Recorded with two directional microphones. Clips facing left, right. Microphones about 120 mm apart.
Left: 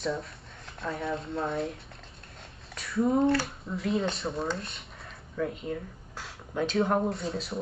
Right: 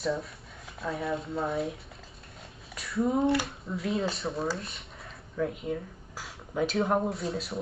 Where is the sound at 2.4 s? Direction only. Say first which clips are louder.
Even; centre (ahead or behind).